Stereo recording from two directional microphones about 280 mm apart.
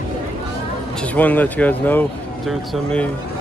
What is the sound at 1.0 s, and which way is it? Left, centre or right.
Speech, centre.